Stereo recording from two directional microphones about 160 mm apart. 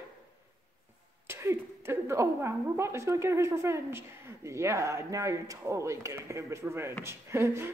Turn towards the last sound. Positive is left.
turn(degrees=-15)  # may be behind; listen again after turning